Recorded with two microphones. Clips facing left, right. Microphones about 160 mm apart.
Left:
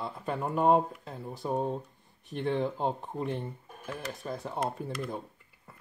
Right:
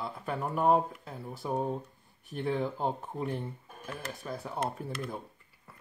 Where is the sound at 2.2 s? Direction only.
Centre (ahead or behind).